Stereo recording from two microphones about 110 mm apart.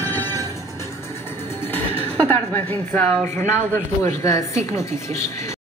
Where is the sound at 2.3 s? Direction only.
15° left (ahead or behind).